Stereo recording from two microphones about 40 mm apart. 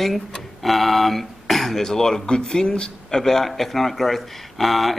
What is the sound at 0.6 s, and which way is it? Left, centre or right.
Speech, centre.